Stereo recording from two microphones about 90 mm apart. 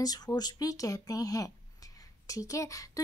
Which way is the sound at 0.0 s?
45° left (ahead or behind).